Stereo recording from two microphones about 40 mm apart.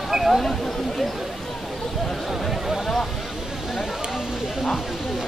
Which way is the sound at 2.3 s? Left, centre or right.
Centre.